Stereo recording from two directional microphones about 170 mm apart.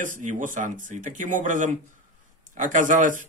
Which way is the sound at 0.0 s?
50° right (ahead or behind).